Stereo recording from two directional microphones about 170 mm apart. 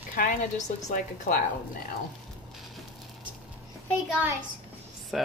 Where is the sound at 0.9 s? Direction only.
50° left (ahead or behind).